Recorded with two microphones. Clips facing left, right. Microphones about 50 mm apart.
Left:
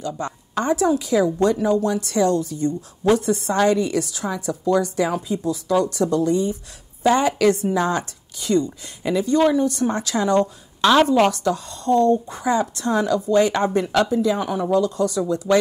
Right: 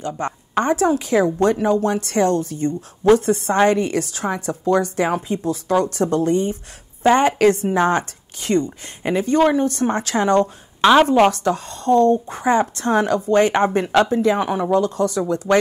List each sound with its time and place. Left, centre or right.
0.2 s a woman's voice: right
10.8 s a woman's voice: right
11.3 s a woman's voice: right